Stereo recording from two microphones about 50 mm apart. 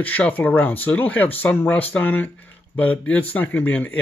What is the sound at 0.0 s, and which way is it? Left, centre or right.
Speech, left.